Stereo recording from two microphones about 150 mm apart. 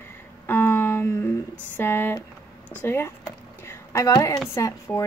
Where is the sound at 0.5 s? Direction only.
15° left (ahead or behind).